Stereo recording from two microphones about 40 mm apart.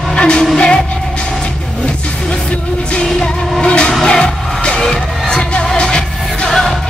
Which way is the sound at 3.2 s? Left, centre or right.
Left.